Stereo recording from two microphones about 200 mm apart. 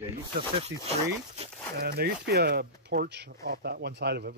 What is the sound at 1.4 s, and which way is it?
Speech, 30° right (ahead or behind).